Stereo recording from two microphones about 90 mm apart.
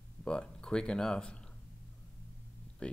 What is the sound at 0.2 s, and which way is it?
Speech, 10° left (ahead or behind).